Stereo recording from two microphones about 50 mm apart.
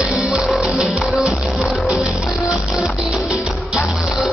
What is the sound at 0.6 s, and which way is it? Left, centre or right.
Music, right.